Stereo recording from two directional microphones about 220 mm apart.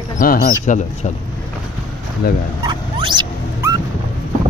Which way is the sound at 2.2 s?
45° left (ahead or behind).